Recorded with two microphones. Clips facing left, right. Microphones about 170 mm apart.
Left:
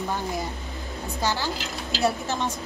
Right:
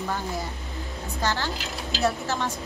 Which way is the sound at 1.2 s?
15° left (ahead or behind).